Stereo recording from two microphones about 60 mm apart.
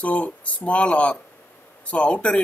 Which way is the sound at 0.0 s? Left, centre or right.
Left.